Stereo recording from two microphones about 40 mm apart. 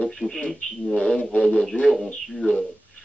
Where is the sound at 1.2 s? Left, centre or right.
Left.